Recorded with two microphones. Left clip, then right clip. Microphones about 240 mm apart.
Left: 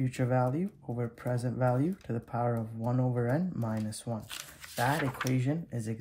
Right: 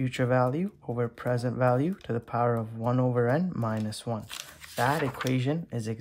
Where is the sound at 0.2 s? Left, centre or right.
Centre.